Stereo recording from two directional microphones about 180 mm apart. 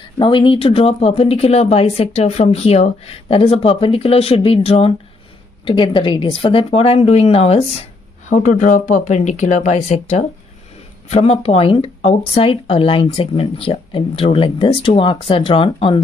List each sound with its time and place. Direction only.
0.2 s speech: 30° left (ahead or behind)